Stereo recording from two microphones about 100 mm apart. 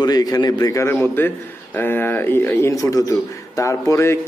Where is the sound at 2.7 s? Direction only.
35° left (ahead or behind).